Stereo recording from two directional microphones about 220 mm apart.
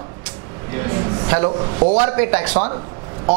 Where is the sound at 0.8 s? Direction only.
15° right (ahead or behind).